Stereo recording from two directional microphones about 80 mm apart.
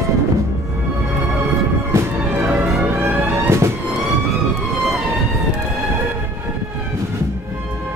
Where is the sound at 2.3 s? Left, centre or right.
Centre.